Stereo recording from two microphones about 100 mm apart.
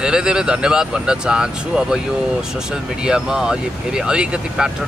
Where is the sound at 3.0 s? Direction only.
5° right (ahead or behind).